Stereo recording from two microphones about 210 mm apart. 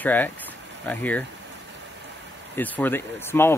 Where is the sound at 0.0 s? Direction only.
10° left (ahead or behind).